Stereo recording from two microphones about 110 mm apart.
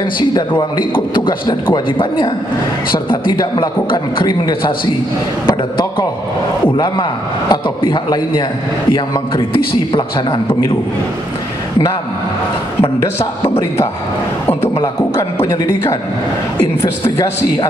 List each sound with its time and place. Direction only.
0.0 s a man's voice: 45° left (ahead or behind)
6.8 s a man's voice: 45° left (ahead or behind)
14.5 s a man's voice: 20° left (ahead or behind)
14.8 s a man's voice: 35° left (ahead or behind)